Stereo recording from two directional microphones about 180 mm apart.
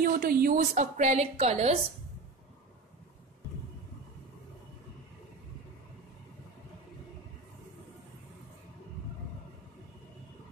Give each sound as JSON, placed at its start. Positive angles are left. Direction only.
{"t": 0.0, "sound": "a woman's voice", "side_deg": -55}